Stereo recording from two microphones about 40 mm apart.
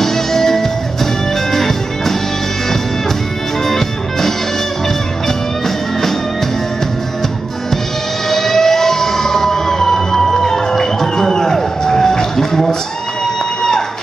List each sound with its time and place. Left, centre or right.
0.0 s music: centre
3.6 s music: centre
8.3 s fire engine: centre
13.6 s a sound: centre